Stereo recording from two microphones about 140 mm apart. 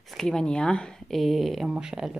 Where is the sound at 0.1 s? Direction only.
5° left (ahead or behind).